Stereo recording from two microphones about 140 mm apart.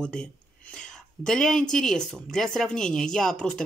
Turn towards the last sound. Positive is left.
turn(degrees=5)  # may be behind; listen again after turning